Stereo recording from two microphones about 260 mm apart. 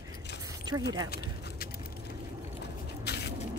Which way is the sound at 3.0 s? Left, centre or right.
Left.